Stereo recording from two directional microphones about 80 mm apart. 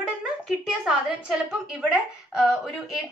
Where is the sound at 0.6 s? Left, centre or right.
Centre.